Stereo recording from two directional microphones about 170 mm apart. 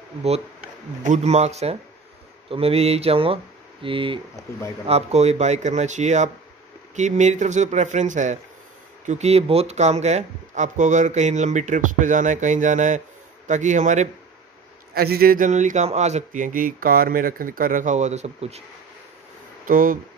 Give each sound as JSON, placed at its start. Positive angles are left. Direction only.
{"t": 1.0, "sound": "speech", "side_deg": -45}
{"t": 15.0, "sound": "speech", "side_deg": -65}
{"t": 19.6, "sound": "speech", "side_deg": -55}